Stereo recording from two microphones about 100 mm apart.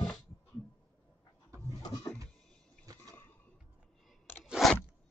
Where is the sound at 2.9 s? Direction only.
35° right (ahead or behind).